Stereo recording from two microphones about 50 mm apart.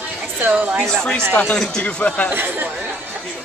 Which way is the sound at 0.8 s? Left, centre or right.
Centre.